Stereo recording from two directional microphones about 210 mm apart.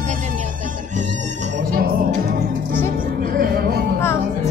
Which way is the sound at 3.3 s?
45° right (ahead or behind).